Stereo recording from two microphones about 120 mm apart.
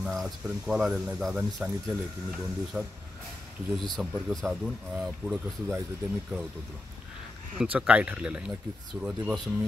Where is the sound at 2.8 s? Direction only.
10° right (ahead or behind).